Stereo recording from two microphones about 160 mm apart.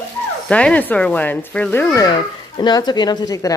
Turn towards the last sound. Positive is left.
turn(degrees=20)  # may be behind; listen again after turning